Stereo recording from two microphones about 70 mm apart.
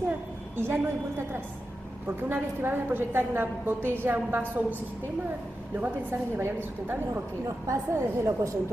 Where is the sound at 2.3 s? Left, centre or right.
Right.